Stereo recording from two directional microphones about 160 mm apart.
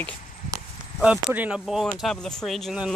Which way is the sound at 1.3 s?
10° right (ahead or behind).